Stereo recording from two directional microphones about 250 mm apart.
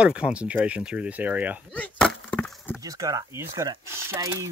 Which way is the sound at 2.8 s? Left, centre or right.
Centre.